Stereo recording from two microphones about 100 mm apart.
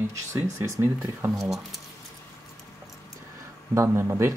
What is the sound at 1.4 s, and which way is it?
Speech, centre (ahead or behind).